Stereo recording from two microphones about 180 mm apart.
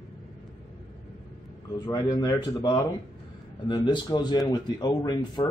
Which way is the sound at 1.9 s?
20° left (ahead or behind).